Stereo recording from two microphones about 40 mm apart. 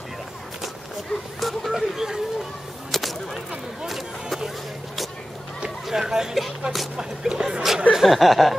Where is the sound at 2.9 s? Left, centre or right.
Centre.